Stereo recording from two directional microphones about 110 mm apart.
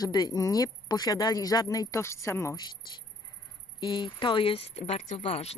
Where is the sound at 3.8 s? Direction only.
45° left (ahead or behind); by 5.5 s 70° left (ahead or behind).